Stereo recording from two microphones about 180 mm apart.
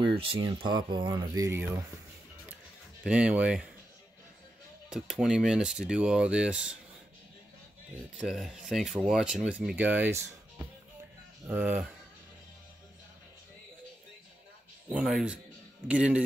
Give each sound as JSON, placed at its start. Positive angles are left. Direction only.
{"t": 0.0, "sound": "speech", "side_deg": -30}
{"t": 3.0, "sound": "speech", "side_deg": -5}
{"t": 4.8, "sound": "speech", "side_deg": -5}
{"t": 8.2, "sound": "speech", "side_deg": -5}
{"t": 15.0, "sound": "speech", "side_deg": 0}